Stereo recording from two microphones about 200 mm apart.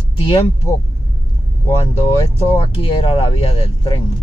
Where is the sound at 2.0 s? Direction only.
25° left (ahead or behind).